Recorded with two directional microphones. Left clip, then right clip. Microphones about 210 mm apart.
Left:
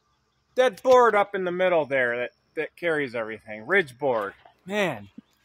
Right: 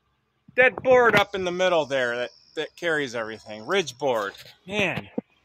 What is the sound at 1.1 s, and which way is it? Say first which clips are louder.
Speech: right 1 dB; centre (ahead or behind).